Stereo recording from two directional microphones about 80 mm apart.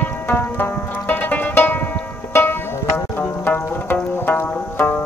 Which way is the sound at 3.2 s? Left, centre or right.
Left.